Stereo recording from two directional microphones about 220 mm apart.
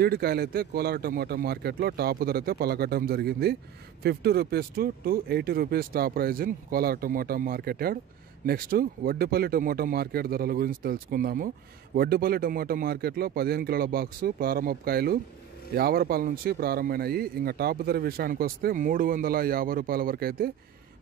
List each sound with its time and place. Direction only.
0.0 s speech: 45° right (ahead or behind)